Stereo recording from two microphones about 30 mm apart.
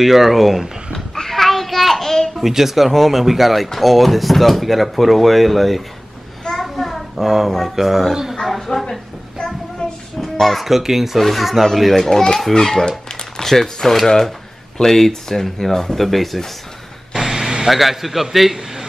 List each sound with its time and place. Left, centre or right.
0.0 s speech: centre
1.1 s a sound: centre
2.0 s babbling: centre
2.4 s speech: centre
6.6 s child singing: centre
7.2 s speech: centre
8.5 s speech: centre
10.4 s speech: centre
10.8 s speech: centre
11.1 s speech: centre
11.6 s speech: centre
17.1 s vehicle: centre
17.6 s speech: centre